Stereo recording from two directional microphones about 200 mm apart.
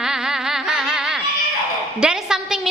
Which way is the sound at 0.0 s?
5° right (ahead or behind).